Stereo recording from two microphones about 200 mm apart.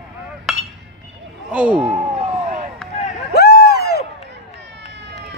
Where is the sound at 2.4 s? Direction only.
35° right (ahead or behind).